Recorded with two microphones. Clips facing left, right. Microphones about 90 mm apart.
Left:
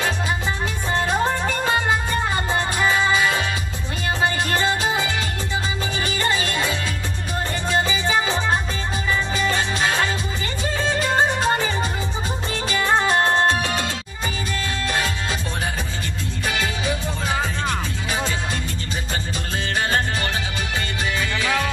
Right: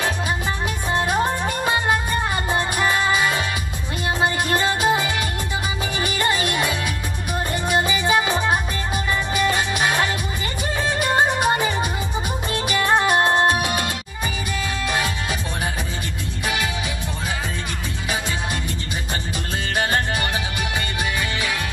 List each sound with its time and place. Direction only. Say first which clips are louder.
2.9 s music: left 2 dB; 15° right (ahead or behind)
4.5 s music: right 2 dB; 15° right (ahead or behind)
6.0 s music: right 1 dB; 15° right (ahead or behind)